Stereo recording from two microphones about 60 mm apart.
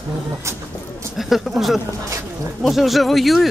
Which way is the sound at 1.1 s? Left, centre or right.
Centre.